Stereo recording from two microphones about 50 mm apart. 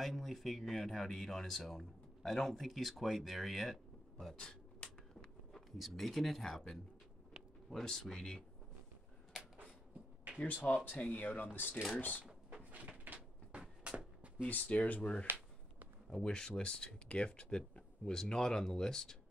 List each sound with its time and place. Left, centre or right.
0.0 s speech: centre
4.4 s a sound: centre
4.8 s a sound: centre
7.7 s speech: centre
10.4 s speech: left
12.3 s drawer open or close: right
13.0 s a sound: right
14.6 s speech: left
16.1 s speech: centre